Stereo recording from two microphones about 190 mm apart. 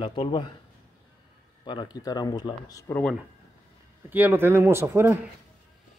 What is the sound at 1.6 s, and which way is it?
Speech, 25° left (ahead or behind).